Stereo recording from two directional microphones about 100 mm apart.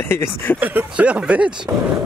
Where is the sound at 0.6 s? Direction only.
15° right (ahead or behind).